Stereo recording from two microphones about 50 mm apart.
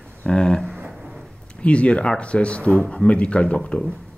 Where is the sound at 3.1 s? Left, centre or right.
Left.